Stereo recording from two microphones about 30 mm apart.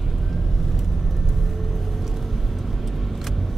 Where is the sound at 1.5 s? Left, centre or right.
Centre.